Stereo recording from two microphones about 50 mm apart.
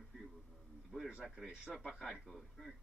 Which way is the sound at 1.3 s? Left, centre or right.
Centre.